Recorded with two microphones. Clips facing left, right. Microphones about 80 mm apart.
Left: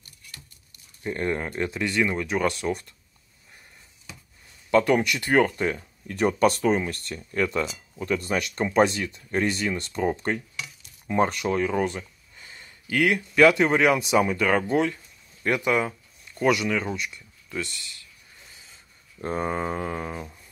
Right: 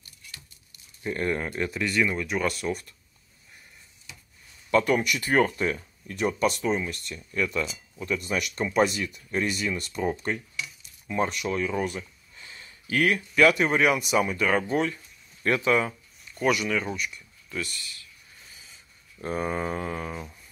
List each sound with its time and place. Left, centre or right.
1.0 s speech: left
4.6 s speech: left
19.2 s speech: left